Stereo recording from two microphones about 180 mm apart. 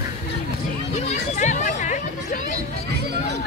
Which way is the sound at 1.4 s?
40° left (ahead or behind).